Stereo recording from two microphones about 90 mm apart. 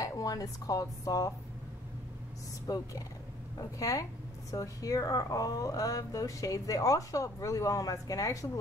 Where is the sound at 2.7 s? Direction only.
45° left (ahead or behind).